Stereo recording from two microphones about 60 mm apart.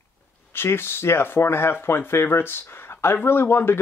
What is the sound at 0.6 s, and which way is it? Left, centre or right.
Speech, left.